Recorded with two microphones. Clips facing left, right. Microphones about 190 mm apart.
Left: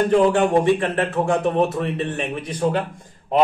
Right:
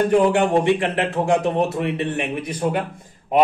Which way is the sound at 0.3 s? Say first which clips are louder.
Left 1 dB; 20° right (ahead or behind).